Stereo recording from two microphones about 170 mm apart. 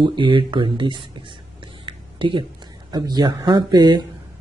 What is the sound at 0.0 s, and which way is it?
Speech, 30° right (ahead or behind).